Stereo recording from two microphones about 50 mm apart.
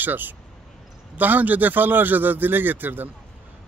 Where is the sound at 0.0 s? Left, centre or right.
Right.